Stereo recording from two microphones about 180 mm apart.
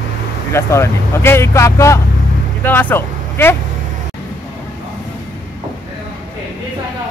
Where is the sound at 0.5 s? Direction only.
15° left (ahead or behind).